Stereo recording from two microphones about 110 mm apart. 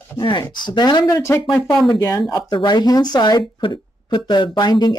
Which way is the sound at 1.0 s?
25° left (ahead or behind).